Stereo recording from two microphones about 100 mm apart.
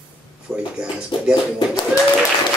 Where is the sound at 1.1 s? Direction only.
50° left (ahead or behind).